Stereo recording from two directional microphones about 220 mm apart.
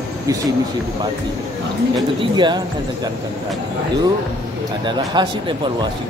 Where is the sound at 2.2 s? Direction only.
20° right (ahead or behind).